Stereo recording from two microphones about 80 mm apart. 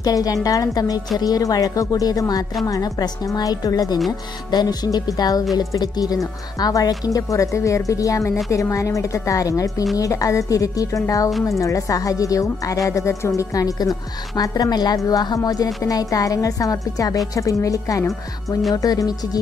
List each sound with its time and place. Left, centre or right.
0.0 s a woman's voice: left